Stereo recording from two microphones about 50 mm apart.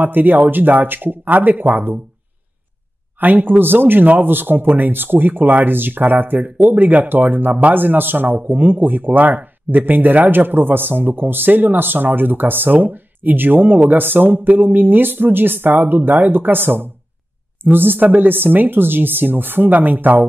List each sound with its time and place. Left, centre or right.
0.0 s speech: right
3.2 s speech: right